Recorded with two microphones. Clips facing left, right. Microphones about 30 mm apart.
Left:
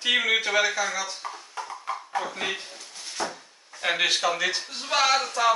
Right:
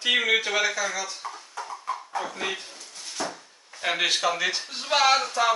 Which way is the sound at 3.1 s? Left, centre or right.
Centre.